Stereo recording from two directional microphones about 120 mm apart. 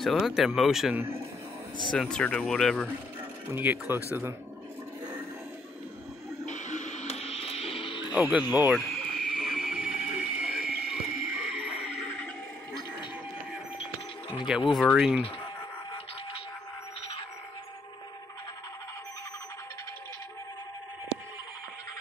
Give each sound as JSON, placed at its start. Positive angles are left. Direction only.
{"t": 0.0, "sound": "speech", "side_deg": 0}
{"t": 3.5, "sound": "speech", "side_deg": -15}
{"t": 6.4, "sound": "radio", "side_deg": 85}
{"t": 8.1, "sound": "speech", "side_deg": -10}
{"t": 8.7, "sound": "a sound", "side_deg": 0}
{"t": 14.5, "sound": "speech", "side_deg": -5}